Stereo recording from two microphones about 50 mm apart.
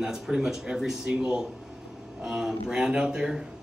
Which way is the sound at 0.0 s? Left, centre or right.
Centre.